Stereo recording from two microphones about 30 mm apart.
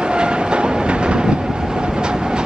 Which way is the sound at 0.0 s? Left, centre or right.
Right.